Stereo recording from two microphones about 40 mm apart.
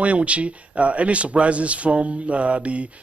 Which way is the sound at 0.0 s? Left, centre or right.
Right.